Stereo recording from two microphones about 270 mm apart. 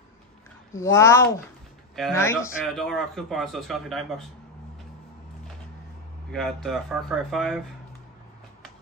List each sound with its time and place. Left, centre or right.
0.7 s speech: centre
6.3 s speech: centre